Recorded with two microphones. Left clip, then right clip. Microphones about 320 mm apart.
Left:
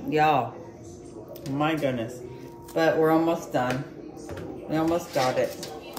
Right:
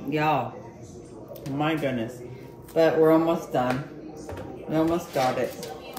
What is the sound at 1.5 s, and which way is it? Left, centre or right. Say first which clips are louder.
Speech: left 1 dB; centre.